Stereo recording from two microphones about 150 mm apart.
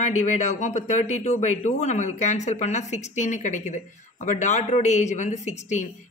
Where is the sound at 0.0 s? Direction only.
55° left (ahead or behind).